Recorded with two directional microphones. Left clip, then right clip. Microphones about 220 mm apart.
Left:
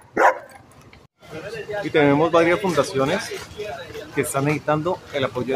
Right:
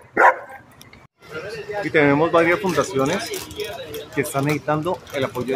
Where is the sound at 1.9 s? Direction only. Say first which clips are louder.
Even; 5° left (ahead or behind).